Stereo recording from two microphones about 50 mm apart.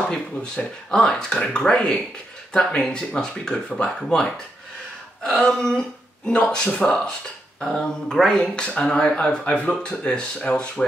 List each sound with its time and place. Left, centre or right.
0.1 s speech: centre
5.4 s speech: centre
7.8 s speech: centre